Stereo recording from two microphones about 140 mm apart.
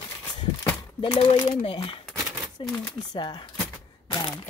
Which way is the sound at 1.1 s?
40° left (ahead or behind).